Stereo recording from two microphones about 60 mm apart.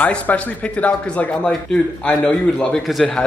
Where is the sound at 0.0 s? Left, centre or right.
Left.